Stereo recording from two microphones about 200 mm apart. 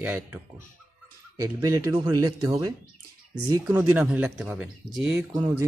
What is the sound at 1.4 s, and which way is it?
Speech, 15° right (ahead or behind).